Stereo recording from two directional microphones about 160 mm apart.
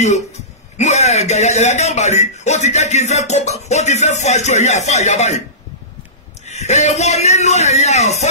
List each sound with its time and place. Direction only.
0.0 s a man's voice: 45° left (ahead or behind)
6.4 s a man's voice: 45° left (ahead or behind)